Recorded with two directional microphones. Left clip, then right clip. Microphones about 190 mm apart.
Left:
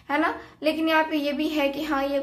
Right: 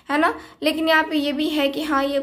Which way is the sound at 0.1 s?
40° right (ahead or behind).